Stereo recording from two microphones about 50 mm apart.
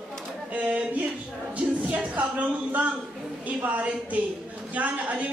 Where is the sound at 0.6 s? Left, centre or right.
Right.